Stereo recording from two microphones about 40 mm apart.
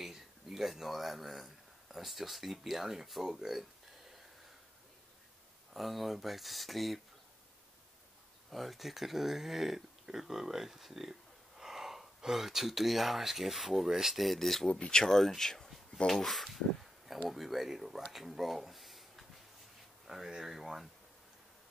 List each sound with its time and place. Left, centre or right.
0.0 s speech: centre
5.7 s speech: centre
8.5 s speech: centre
14.2 s speech: centre
14.7 s speech: left
15.0 s speech: centre
16.3 s speech: centre